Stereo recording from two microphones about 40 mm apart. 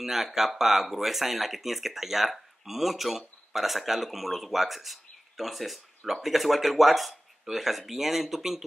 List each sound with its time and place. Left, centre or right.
0.0 s speech: centre